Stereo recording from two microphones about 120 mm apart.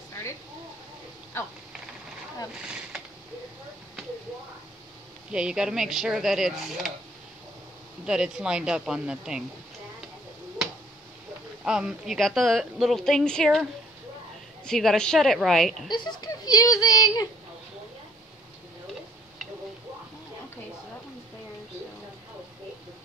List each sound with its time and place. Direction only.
2.6 s a sound: 5° right (ahead or behind)
5.3 s a woman's voice: 5° right (ahead or behind)
8.0 s speech: 5° right (ahead or behind)
11.6 s a woman's voice: 5° right (ahead or behind)
14.7 s a woman's voice: 5° left (ahead or behind)
15.9 s speech: 40° left (ahead or behind)